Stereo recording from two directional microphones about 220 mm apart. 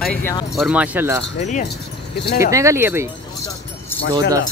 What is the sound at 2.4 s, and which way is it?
Speech, 15° right (ahead or behind).